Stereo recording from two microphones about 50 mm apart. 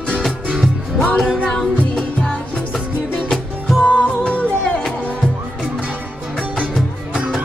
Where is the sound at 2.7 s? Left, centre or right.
Centre.